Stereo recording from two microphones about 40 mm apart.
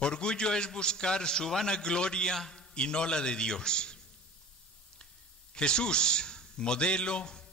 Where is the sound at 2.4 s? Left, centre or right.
Centre.